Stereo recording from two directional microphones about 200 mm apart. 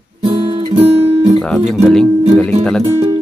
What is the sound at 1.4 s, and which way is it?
Music, centre (ahead or behind).